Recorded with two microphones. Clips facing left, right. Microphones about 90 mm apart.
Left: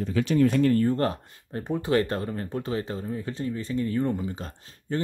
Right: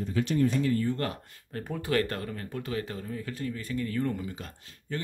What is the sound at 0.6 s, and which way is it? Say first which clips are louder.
Speech: left 6 dB; 50° left (ahead or behind).